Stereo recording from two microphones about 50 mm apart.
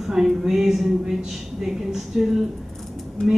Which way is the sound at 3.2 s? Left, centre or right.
Centre.